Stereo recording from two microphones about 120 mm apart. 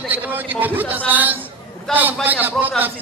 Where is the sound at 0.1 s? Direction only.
15° right (ahead or behind).